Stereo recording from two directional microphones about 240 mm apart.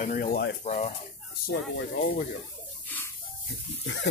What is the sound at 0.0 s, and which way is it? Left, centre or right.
Speech, left.